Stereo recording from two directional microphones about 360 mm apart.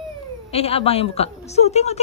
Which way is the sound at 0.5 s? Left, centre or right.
Centre.